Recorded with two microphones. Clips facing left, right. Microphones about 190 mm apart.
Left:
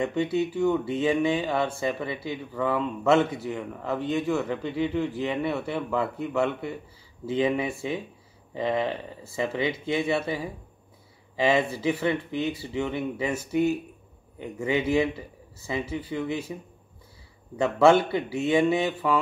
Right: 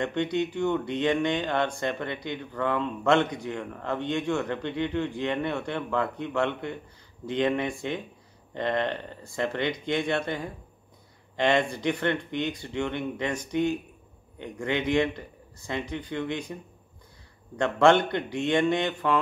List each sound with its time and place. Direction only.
0.0 s speech: 5° left (ahead or behind)
17.6 s speech: 5° left (ahead or behind)